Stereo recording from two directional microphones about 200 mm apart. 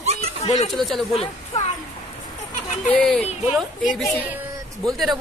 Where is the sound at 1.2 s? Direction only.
30° left (ahead or behind).